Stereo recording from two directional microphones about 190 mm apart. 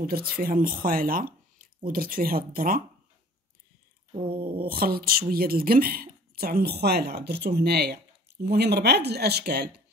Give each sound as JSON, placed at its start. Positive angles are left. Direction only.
{"t": 0.0, "sound": "speech", "side_deg": -50}
{"t": 4.1, "sound": "a sound", "side_deg": -25}
{"t": 4.4, "sound": "speech", "side_deg": -50}